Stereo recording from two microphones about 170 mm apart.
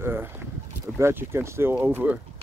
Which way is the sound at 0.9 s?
15° right (ahead or behind).